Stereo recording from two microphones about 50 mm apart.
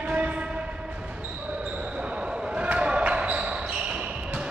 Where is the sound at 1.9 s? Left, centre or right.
Right.